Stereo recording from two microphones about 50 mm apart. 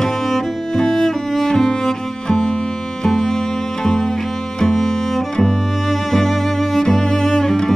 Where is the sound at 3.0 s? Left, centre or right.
Centre.